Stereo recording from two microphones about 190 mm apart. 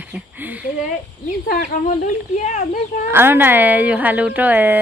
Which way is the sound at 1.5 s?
40° left (ahead or behind).